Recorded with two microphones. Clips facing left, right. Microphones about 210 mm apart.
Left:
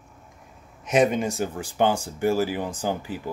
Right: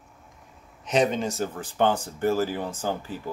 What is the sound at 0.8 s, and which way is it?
Speech, 10° left (ahead or behind).